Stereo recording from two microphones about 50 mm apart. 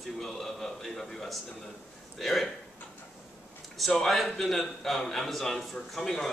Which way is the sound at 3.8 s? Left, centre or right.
Centre.